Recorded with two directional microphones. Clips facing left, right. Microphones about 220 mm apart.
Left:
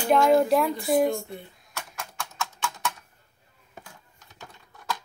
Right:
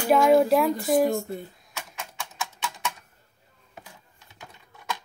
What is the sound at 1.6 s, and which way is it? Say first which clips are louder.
Typing: even; centre (ahead or behind).